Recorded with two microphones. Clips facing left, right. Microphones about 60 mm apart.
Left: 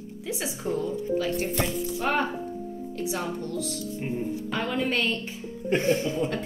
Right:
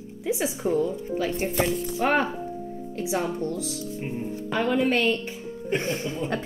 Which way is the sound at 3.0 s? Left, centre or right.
Centre.